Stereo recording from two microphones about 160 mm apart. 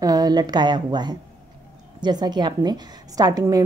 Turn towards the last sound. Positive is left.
turn(degrees=-25)  # may be behind; listen again after turning